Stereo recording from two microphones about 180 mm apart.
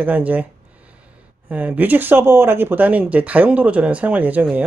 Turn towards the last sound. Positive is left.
turn(degrees=-10)  # may be behind; listen again after turning